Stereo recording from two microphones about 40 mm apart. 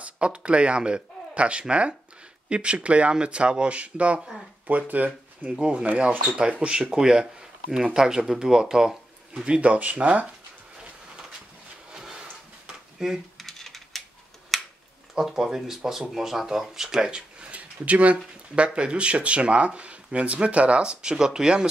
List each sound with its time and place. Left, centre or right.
0.0 s speech: right
5.5 s speech: right
9.6 s speech: right
11.9 s drawer open or close: centre
13.4 s typing: centre
14.5 s finger snapping: centre
15.1 s speech: centre
17.5 s speech: right; by 21.6 s centre